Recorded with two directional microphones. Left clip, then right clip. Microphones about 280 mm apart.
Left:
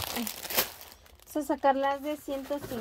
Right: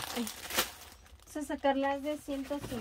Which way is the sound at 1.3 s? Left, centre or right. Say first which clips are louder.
Left 5 dB; left.